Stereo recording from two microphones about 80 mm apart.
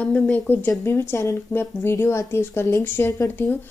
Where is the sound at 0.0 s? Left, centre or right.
Centre.